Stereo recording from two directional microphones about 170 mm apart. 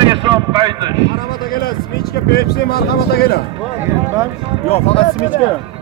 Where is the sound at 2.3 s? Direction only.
70° left (ahead or behind).